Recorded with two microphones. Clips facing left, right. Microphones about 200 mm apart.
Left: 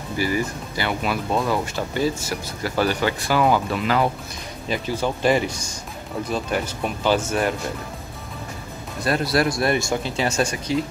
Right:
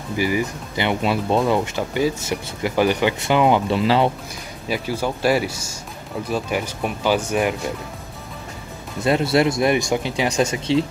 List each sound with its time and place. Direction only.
0.2 s speech: 15° right (ahead or behind)
1.8 s speech: 15° right (ahead or behind)
4.6 s speech: 10° right (ahead or behind)
9.0 s speech: 25° right (ahead or behind)